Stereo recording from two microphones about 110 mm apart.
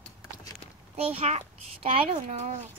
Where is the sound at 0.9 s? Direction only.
70° right (ahead or behind); by 2.7 s 85° right.